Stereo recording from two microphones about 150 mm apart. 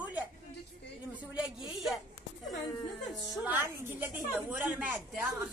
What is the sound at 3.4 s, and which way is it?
Speech, 15° right (ahead or behind).